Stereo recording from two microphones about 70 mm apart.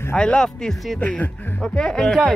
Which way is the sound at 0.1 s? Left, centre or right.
Centre.